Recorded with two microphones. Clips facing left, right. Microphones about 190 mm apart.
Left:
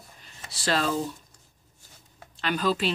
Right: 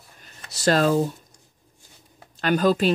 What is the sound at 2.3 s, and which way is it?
Speech, 45° right (ahead or behind).